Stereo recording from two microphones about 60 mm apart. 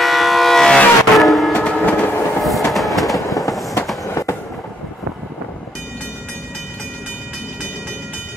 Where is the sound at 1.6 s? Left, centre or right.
Centre.